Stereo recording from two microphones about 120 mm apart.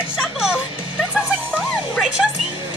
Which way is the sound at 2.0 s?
5° right (ahead or behind).